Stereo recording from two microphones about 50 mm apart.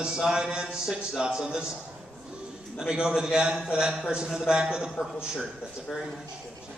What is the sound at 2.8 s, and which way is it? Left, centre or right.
A man's voice, centre.